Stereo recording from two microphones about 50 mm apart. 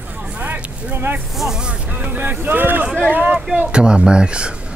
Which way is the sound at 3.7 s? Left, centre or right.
Centre.